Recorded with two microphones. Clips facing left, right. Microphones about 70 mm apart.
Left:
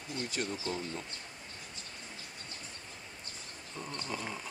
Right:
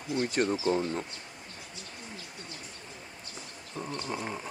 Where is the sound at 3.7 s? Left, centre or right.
Right.